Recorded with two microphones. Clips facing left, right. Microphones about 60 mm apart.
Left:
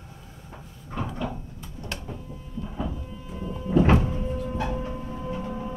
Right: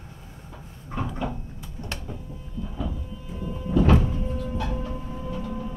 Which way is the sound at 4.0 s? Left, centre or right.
Centre.